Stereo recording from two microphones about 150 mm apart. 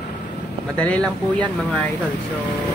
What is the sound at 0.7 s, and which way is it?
Speech, 10° left (ahead or behind).